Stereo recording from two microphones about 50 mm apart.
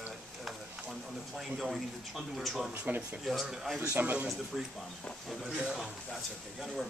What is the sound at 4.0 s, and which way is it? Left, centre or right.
Speech, right.